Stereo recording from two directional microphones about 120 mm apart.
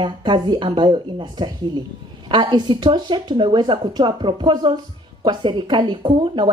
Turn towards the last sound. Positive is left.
turn(degrees=-40)  # may be behind; listen again after turning